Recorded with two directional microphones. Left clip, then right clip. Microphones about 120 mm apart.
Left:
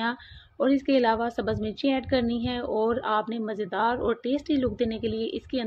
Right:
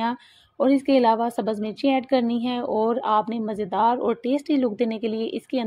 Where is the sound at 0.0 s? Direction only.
45° right (ahead or behind).